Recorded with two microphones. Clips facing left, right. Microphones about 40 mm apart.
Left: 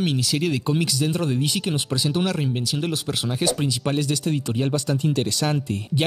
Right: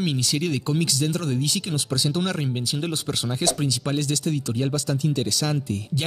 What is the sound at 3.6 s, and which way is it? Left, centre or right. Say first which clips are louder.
Speech: left 2 dB; centre.